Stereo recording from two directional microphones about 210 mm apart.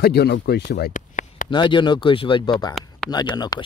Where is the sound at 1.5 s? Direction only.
20° left (ahead or behind).